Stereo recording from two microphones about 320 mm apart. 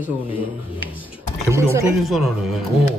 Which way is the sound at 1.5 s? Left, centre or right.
Centre.